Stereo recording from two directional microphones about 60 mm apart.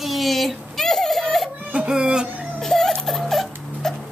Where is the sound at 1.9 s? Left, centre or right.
Centre.